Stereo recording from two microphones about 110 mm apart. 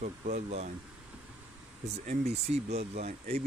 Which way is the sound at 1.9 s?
75° right (ahead or behind).